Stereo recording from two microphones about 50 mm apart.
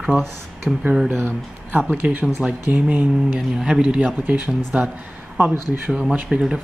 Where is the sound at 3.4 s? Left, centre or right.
Centre.